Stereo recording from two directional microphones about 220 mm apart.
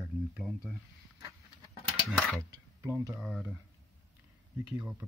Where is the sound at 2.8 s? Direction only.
15° right (ahead or behind).